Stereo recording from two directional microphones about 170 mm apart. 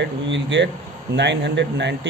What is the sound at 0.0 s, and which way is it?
Speech, 90° right.